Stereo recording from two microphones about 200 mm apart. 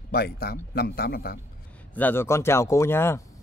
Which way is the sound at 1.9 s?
10° left (ahead or behind).